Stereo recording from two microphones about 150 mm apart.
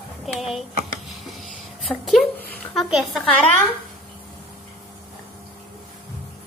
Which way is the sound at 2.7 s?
5° left (ahead or behind).